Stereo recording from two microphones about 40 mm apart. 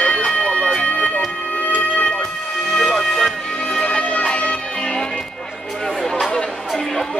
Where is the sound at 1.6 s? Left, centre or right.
Left.